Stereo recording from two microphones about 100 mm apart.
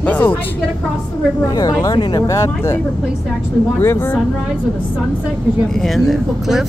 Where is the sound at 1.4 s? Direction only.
35° left (ahead or behind).